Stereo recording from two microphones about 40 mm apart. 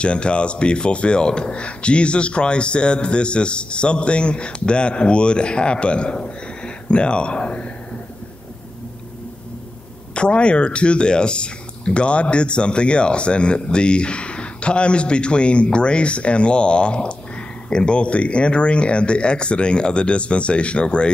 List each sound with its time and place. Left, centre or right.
0.0 s speech: left
10.1 s speech: left